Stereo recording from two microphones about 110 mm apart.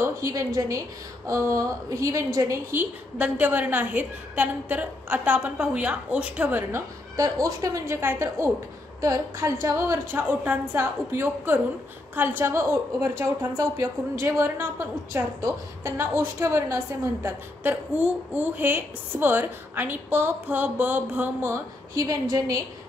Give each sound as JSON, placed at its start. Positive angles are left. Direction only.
{"t": 0.0, "sound": "a woman's voice", "side_deg": -30}
{"t": 6.7, "sound": "a woman's voice", "side_deg": -30}
{"t": 21.9, "sound": "a woman's voice", "side_deg": -30}